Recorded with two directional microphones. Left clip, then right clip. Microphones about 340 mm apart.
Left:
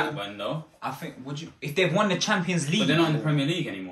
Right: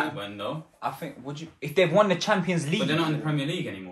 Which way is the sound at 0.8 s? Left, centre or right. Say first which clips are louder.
Right 2 dB; centre.